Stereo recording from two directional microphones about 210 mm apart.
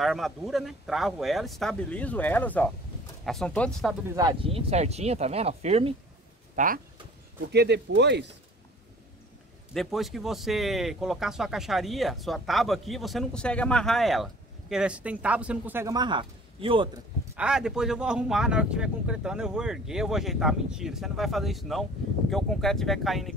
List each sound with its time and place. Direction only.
0.0 s speech: centre (ahead or behind)
4.1 s speech: 20° right (ahead or behind)
6.5 s speech: 40° right (ahead or behind)
7.5 s speech: 50° right (ahead or behind)
9.8 s speech: centre (ahead or behind); by 17.0 s 25° right (ahead or behind)
17.4 s speech: 5° right (ahead or behind)